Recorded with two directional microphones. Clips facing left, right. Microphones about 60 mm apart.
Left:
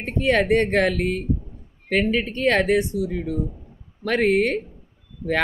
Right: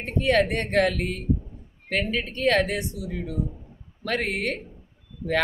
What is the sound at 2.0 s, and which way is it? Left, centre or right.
Speech, left.